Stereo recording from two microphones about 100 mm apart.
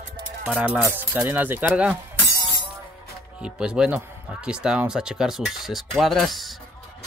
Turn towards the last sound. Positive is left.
turn(degrees=0)  # may be behind; listen again after turning